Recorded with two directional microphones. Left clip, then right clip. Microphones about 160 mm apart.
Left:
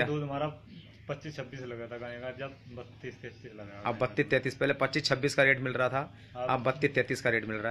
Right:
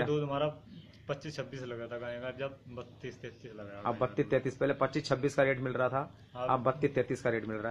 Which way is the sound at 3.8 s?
5° left (ahead or behind).